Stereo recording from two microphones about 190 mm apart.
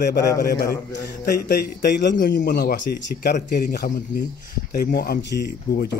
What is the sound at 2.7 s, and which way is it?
Speech, 45° left (ahead or behind).